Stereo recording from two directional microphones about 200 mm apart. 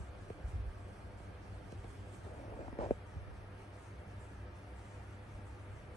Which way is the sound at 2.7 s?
30° left (ahead or behind).